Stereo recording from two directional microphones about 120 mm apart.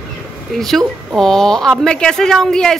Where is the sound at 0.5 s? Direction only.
Centre (ahead or behind).